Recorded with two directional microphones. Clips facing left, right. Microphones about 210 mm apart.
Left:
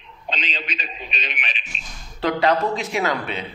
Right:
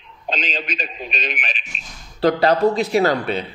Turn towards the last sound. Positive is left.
turn(degrees=-35)  # may be behind; listen again after turning